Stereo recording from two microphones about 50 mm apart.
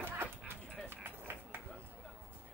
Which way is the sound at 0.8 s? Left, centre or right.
Right.